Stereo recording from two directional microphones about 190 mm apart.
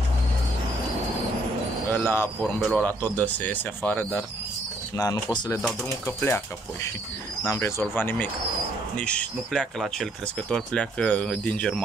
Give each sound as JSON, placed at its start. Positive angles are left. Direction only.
{"t": 1.9, "sound": "speech", "side_deg": 10}
{"t": 2.9, "sound": "speech", "side_deg": -20}
{"t": 3.3, "sound": "speech", "side_deg": 10}